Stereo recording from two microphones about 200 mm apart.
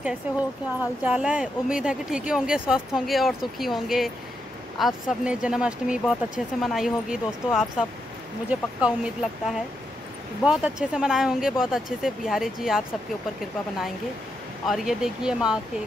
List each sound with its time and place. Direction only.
1.0 s speech: 5° right (ahead or behind)
14.7 s speech: centre (ahead or behind)